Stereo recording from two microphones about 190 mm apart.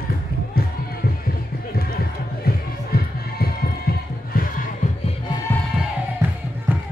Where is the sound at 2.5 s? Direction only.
55° left (ahead or behind).